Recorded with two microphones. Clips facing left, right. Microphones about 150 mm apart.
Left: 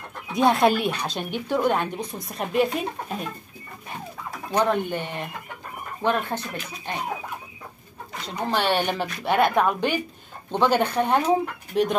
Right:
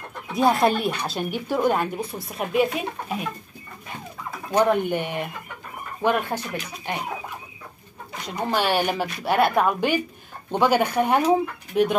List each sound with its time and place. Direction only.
0.3 s speech: centre (ahead or behind)
4.6 s speech: 15° right (ahead or behind)
8.3 s speech: 10° right (ahead or behind)